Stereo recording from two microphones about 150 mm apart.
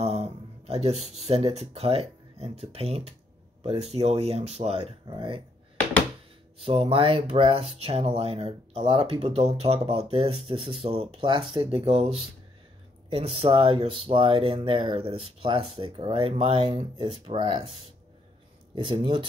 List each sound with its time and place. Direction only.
0.0 s speech: 40° right (ahead or behind)
6.6 s speech: 40° right (ahead or behind)
18.8 s speech: 35° right (ahead or behind)